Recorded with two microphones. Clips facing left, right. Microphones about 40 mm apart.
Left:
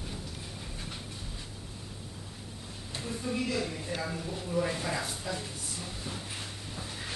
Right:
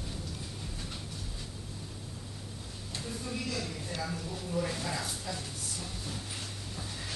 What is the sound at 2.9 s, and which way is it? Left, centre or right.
A woman's voice, centre.